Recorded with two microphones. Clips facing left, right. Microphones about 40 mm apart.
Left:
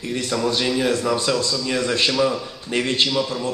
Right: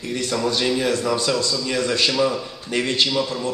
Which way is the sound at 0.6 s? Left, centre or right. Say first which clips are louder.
Even; centre.